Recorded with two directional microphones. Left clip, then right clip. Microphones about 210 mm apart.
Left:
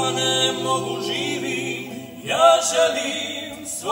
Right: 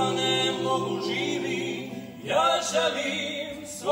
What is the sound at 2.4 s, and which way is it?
Choir, 45° left (ahead or behind).